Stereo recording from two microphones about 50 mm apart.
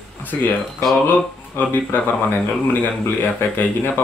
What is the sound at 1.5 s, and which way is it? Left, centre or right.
Speech, left.